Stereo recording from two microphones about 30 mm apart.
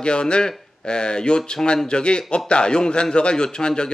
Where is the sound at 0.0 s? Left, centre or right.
Left.